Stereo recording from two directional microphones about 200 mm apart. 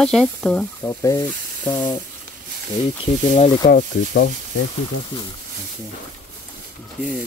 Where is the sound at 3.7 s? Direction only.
45° left (ahead or behind).